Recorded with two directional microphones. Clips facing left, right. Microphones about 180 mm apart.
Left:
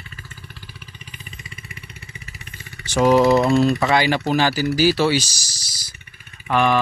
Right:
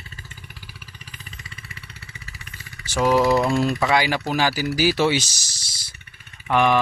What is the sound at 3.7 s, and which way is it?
Speech, 10° right (ahead or behind).